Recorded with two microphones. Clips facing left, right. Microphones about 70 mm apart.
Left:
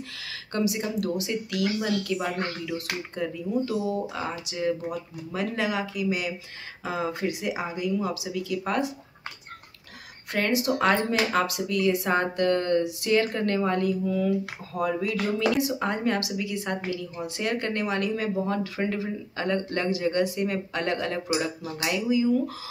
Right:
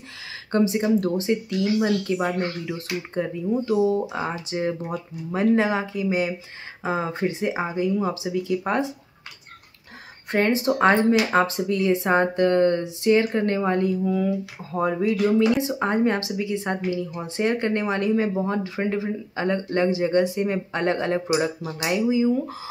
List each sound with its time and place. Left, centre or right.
0.5 s speech: right
10.3 s speech: right